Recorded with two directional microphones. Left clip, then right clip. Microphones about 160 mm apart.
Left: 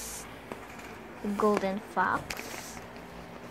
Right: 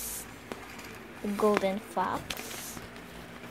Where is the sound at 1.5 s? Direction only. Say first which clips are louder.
Right 1 dB; 15° right (ahead or behind).